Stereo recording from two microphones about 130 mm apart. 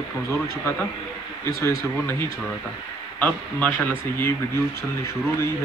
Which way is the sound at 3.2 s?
15° left (ahead or behind).